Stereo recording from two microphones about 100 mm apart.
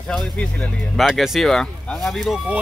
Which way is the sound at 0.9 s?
Centre (ahead or behind).